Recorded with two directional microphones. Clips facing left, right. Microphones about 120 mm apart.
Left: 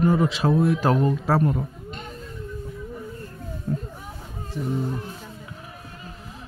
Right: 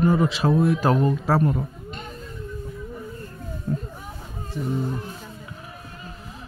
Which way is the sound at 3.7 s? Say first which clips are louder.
Even; 15° right (ahead or behind).